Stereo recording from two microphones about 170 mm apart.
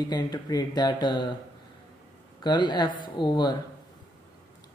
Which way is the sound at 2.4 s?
25° left (ahead or behind).